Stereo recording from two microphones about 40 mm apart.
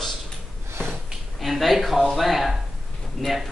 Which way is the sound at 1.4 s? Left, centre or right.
Centre.